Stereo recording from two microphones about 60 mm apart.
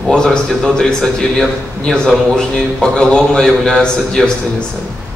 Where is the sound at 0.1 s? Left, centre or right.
Centre.